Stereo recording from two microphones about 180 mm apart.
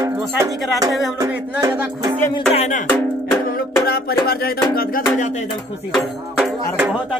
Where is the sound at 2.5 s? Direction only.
40° left (ahead or behind).